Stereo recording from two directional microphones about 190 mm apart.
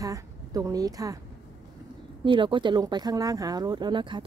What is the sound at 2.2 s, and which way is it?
Speech, 25° right (ahead or behind).